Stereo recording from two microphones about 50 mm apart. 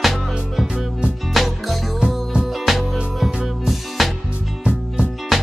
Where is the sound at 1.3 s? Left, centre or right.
Centre.